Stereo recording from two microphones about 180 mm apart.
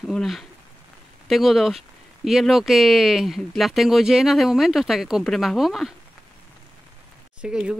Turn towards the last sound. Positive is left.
turn(degrees=-5)  # may be behind; listen again after turning